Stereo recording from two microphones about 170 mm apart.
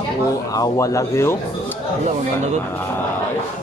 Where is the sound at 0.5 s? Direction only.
20° left (ahead or behind).